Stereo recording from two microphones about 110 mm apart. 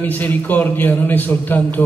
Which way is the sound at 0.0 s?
15° left (ahead or behind).